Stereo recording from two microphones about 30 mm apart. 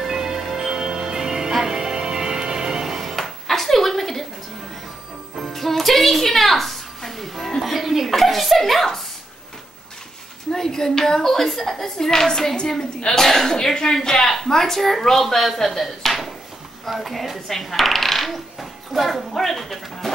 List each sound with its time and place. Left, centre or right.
0.0 s music: centre
2.7 s music: centre
3.2 s a sound: centre
5.4 s music: centre
7.6 s a sound: centre
8.1 s chuckle: centre
10.5 s a woman's voice: centre